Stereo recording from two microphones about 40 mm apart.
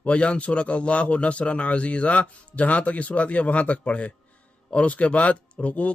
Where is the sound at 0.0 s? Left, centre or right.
Left.